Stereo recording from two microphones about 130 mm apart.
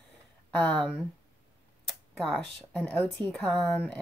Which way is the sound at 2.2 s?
Centre (ahead or behind).